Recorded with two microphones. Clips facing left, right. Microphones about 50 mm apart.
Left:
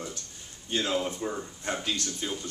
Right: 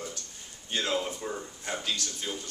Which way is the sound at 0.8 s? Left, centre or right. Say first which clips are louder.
Left 1 dB; centre.